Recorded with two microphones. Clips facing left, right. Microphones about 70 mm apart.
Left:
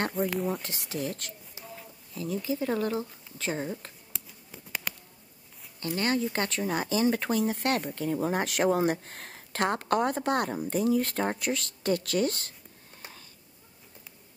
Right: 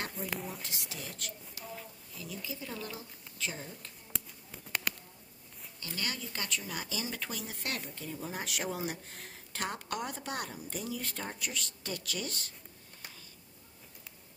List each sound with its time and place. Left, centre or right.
0.3 s speech: centre
0.6 s speech: left
1.6 s a sound: left
2.1 s speech: left
4.1 s a sound: centre
5.9 s speech: left